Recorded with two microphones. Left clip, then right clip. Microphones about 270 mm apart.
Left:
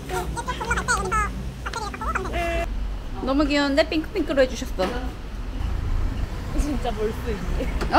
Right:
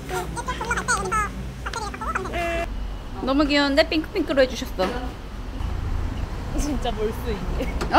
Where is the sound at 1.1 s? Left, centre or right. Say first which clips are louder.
Even; left.